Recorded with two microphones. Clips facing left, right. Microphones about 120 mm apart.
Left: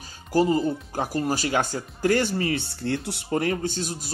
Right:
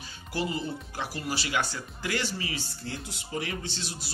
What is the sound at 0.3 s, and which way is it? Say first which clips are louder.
Speech: left 10 dB; 40° left (ahead or behind).